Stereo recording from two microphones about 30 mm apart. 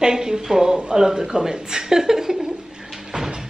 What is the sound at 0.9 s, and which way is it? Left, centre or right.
A woman's voice, centre.